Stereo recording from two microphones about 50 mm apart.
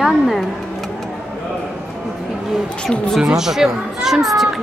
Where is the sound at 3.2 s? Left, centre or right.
Centre.